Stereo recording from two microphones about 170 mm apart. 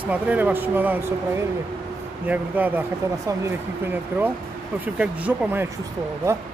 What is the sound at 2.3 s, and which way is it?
Speech, 10° right (ahead or behind).